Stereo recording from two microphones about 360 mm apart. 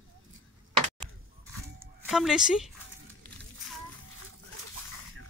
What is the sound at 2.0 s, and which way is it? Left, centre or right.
Speech, centre.